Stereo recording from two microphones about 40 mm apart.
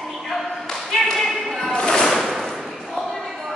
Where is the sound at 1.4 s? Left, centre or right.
Centre.